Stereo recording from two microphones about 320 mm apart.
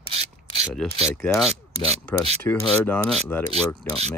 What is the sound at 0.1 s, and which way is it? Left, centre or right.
Rub, centre.